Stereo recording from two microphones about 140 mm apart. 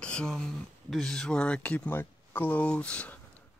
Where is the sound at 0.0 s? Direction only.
5° left (ahead or behind).